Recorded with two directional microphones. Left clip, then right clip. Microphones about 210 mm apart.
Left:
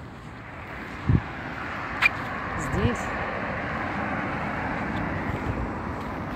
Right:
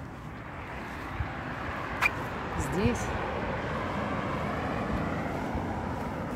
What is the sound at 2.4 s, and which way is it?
Vehicle, 30° right (ahead or behind).